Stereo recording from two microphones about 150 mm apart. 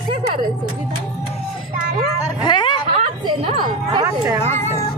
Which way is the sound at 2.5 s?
30° left (ahead or behind).